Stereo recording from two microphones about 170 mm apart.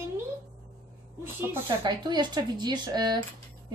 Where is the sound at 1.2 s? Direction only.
15° right (ahead or behind).